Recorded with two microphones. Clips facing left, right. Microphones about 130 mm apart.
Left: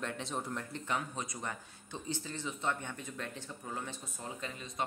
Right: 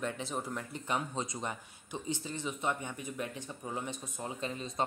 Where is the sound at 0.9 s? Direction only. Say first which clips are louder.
Right 4 dB; 25° right (ahead or behind).